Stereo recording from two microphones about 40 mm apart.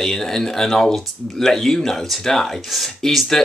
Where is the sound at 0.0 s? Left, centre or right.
Centre.